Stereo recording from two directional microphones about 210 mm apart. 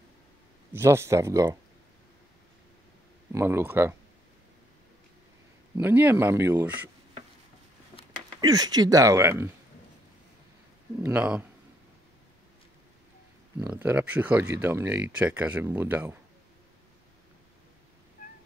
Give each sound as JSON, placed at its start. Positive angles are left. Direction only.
{"t": 0.7, "sound": "speech", "side_deg": -10}
{"t": 3.3, "sound": "speech", "side_deg": -10}
{"t": 5.8, "sound": "speech", "side_deg": -10}
{"t": 8.4, "sound": "speech", "side_deg": -20}
{"t": 11.0, "sound": "speech", "side_deg": -10}
{"t": 13.6, "sound": "speech", "side_deg": -10}